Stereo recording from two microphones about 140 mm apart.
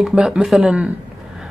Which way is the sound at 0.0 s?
5° right (ahead or behind).